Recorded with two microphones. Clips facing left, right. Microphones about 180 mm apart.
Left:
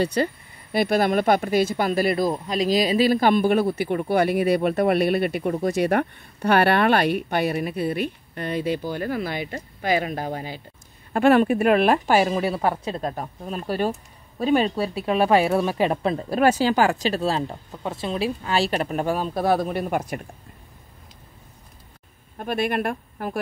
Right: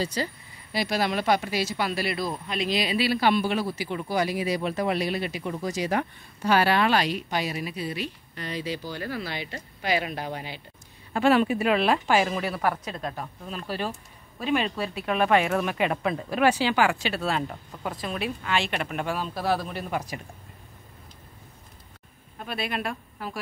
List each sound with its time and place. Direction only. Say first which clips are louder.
0.0 s speech: left 7 dB; 60° left (ahead or behind); by 10.6 s 45° left (ahead or behind)
11.1 s speech: left 4 dB; 55° left (ahead or behind)
22.4 s speech: left 7 dB; 50° left (ahead or behind)